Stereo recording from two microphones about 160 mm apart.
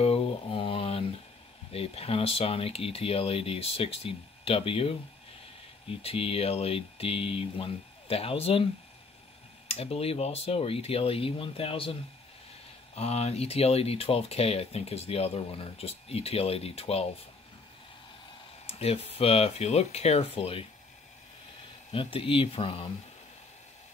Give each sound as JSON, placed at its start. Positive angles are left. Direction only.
{"t": 0.0, "sound": "mantra", "side_deg": 40}
{"t": 1.7, "sound": "speech", "side_deg": 40}
{"t": 9.7, "sound": "speech", "side_deg": 35}
{"t": 18.7, "sound": "speech", "side_deg": 40}
{"t": 21.9, "sound": "speech", "side_deg": 35}